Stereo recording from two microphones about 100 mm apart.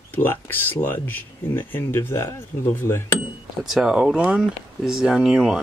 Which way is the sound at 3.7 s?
5° right (ahead or behind).